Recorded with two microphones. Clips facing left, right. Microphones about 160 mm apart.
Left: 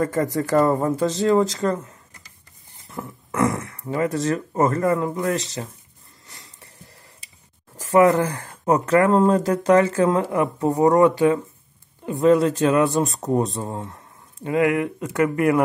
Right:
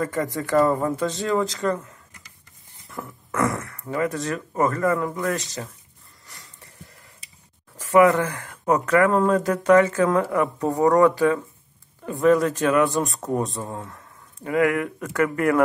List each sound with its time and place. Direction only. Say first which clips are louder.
0.0 s speech: left 4 dB; 40° left (ahead or behind)
2.9 s speech: left 1 dB; 20° left (ahead or behind)
6.2 s a sound: even; 25° left (ahead or behind)
7.7 s speech: left 1 dB; 35° left (ahead or behind)
13.2 s speech: left 3 dB; 20° left (ahead or behind)